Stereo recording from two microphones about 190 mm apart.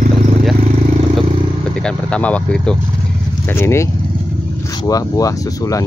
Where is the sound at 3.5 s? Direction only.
15° left (ahead or behind).